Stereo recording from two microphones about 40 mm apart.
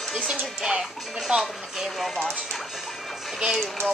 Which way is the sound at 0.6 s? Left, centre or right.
Centre.